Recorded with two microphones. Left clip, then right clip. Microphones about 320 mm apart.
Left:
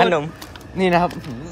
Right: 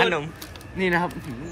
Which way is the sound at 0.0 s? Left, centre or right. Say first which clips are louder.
Left 5 dB; centre.